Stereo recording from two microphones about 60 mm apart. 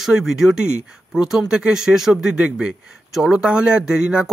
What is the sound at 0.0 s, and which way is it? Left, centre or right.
Speech, centre.